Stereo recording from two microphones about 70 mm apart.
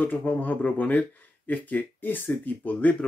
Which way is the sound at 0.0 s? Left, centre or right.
Left.